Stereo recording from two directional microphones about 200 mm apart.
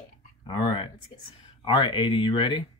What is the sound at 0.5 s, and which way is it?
Speech, 25° left (ahead or behind).